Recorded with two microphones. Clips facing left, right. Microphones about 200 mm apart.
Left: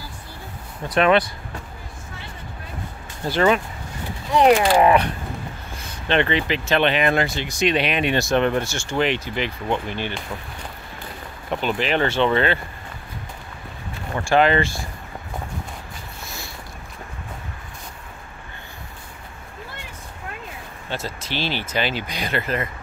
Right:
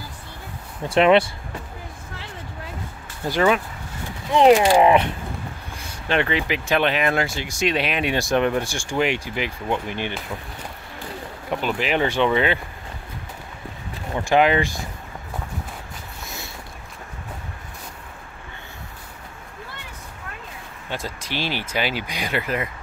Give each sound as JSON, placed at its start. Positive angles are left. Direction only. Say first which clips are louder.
{"t": 0.8, "sound": "speech", "louder": "right 2 dB", "side_deg": -25}
{"t": 3.3, "sound": "speech", "louder": "left 1 dB", "side_deg": -10}
{"t": 4.4, "sound": "speech", "louder": "right 1 dB", "side_deg": -20}
{"t": 6.0, "sound": "speech", "louder": "left 2 dB", "side_deg": -5}
{"t": 11.5, "sound": "speech", "louder": "left 1 dB", "side_deg": -10}
{"t": 14.1, "sound": "speech", "louder": "even", "side_deg": -15}
{"t": 20.9, "sound": "speech", "louder": "left 1 dB", "side_deg": -15}